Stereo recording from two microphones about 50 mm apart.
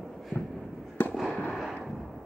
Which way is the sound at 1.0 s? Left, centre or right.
Left.